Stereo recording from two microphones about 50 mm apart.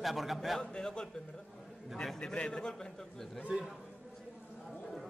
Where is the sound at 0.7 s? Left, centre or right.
Centre.